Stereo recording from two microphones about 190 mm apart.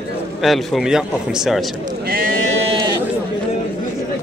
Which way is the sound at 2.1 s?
50° right (ahead or behind).